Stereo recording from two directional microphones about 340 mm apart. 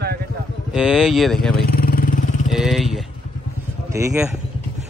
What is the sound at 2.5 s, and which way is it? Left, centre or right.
Speech, centre.